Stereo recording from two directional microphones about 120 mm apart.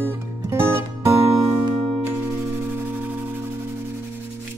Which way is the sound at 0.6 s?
20° right (ahead or behind).